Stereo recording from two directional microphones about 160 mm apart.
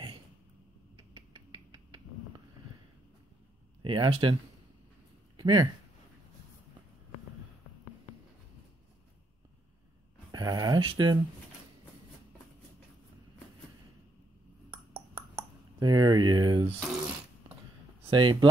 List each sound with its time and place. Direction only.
3.8 s speech: 30° right (ahead or behind)
5.4 s speech: 25° right (ahead or behind)
10.3 s a sound: 25° right (ahead or behind)
15.1 s a sound: 30° right (ahead or behind)
16.8 s mechanisms: 5° right (ahead or behind)
18.1 s speech: 30° right (ahead or behind)